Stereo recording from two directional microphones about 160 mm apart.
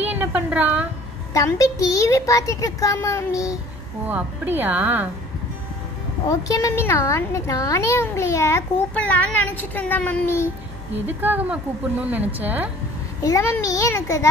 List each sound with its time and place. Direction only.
0.0 s a woman's voice: 10° right (ahead or behind)
1.3 s a child's voice: 20° left (ahead or behind)
4.0 s a woman's voice: 10° right (ahead or behind)
6.2 s a child's voice: 20° left (ahead or behind)
11.1 s a woman's voice: 10° right (ahead or behind)
13.2 s a child's voice: 20° left (ahead or behind)